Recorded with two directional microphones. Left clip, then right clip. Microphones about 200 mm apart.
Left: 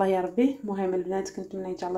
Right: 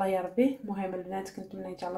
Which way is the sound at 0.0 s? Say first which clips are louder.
Left 3 dB; 25° left (ahead or behind).